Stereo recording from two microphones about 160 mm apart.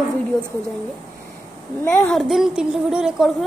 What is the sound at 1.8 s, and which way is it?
Speech, 10° left (ahead or behind).